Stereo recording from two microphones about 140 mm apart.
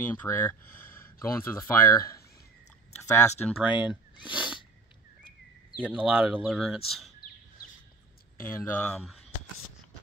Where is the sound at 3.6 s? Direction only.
10° right (ahead or behind).